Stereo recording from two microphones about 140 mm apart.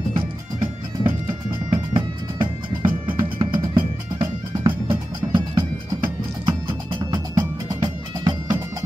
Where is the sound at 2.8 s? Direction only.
40° right (ahead or behind).